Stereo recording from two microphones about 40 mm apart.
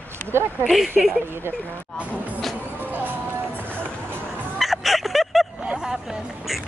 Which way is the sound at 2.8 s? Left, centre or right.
Right.